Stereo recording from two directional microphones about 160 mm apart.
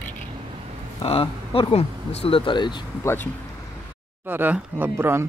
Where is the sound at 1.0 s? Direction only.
35° left (ahead or behind).